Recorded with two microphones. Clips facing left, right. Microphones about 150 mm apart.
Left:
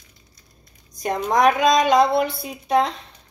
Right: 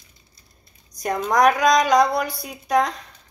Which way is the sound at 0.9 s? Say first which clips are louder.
Even; 25° left (ahead or behind).